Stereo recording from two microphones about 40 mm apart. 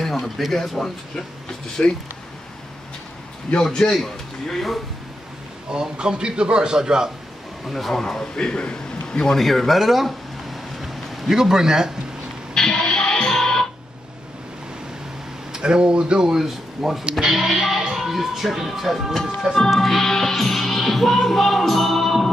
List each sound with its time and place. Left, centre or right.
0.0 s a sound: centre
0.5 s speech: centre
1.8 s speech: left
3.7 s a man's voice: centre
5.7 s a man's voice: centre
7.7 s speech: centre
8.4 s a man's voice: left
9.4 s speech: centre
10.8 s a sound: centre
12.5 s music: centre
15.5 s a man's voice: right
16.3 s speech: centre
19.7 s music: centre